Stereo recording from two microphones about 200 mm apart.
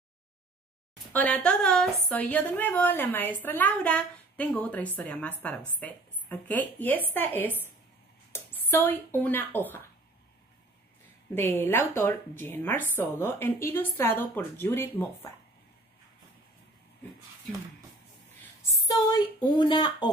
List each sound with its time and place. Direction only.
1.1 s a woman's voice: 5° left (ahead or behind)
11.3 s a woman's voice: 10° left (ahead or behind)
18.9 s speech: 20° left (ahead or behind)